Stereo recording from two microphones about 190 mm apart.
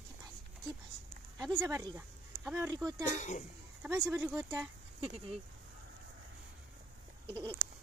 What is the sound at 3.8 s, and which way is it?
Speech, 10° right (ahead or behind).